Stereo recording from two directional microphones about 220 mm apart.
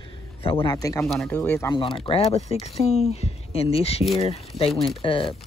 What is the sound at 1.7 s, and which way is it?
Speech, 25° left (ahead or behind).